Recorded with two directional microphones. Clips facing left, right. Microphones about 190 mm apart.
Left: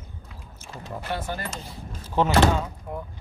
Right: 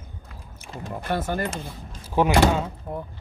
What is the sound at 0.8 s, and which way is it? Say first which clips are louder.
Speech: right 4 dB; 50° right (ahead or behind).